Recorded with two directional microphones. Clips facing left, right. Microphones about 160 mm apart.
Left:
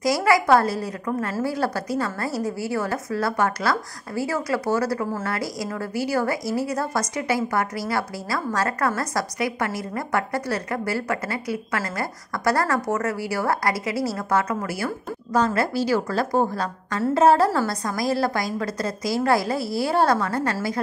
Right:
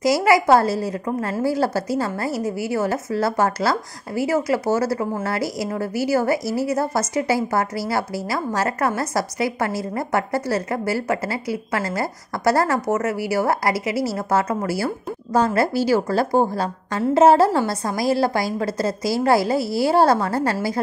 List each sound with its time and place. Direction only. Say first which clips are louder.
0.0 s a woman's voice: right 3 dB; 25° right (ahead or behind)